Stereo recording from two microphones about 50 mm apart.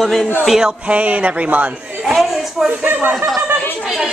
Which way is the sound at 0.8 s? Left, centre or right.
Right.